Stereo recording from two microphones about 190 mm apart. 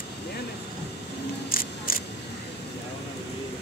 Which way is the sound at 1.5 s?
50° left (ahead or behind).